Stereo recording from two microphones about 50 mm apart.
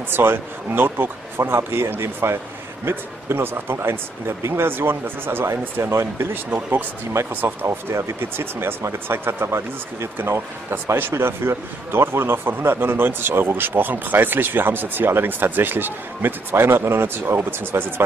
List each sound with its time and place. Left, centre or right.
0.1 s speech: right
6.3 s speech: right
11.0 s speech: right